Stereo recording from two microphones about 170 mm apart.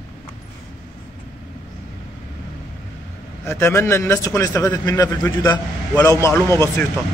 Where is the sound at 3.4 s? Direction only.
15° left (ahead or behind).